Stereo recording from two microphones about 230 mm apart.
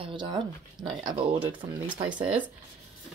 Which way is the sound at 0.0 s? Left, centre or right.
Centre.